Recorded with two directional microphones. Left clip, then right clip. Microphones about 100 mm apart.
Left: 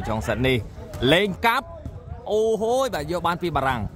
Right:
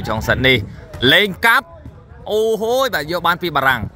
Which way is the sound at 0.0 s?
10° right (ahead or behind).